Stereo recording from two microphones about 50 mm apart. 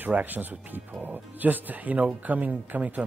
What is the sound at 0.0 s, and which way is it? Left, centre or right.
Speech, right.